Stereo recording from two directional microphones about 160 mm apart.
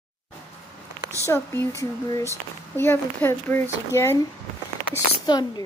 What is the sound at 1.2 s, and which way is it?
Speech, 15° left (ahead or behind).